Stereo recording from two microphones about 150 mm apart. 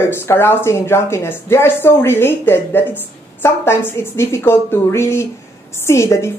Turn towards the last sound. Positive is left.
turn(degrees=20)  # may be behind; listen again after turning